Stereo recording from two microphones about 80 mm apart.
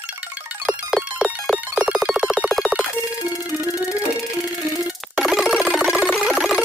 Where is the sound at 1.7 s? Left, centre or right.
Centre.